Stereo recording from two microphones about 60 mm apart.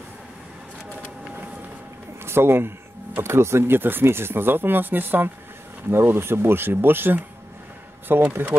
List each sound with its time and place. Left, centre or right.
2.2 s speech: right
8.3 s speech: right